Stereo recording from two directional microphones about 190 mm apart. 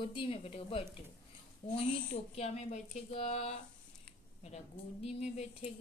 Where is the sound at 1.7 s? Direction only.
35° left (ahead or behind).